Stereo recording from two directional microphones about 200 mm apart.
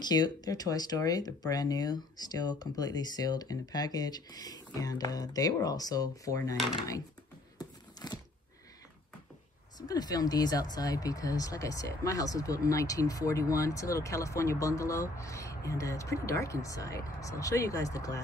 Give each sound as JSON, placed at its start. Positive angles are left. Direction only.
{"t": 0.0, "sound": "speech", "side_deg": 20}
{"t": 7.5, "sound": "a sound", "side_deg": 20}
{"t": 9.8, "sound": "speech", "side_deg": 20}